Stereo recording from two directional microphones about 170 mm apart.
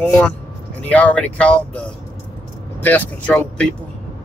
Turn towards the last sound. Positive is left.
turn(degrees=10)  # may be behind; listen again after turning